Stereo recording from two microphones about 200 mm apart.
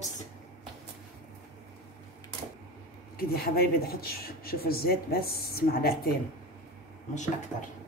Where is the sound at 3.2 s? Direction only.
50° left (ahead or behind).